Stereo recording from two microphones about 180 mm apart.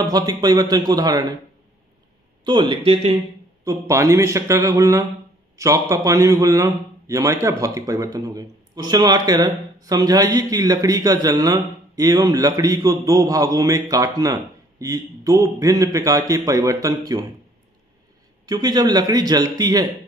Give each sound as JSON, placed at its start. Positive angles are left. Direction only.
{"t": 0.0, "sound": "a man's voice", "side_deg": -20}
{"t": 2.4, "sound": "a man's voice", "side_deg": -25}
{"t": 3.6, "sound": "a man's voice", "side_deg": -15}
{"t": 18.4, "sound": "a man's voice", "side_deg": -20}